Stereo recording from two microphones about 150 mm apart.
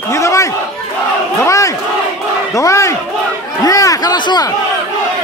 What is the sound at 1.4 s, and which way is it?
Crowd, 20° left (ahead or behind).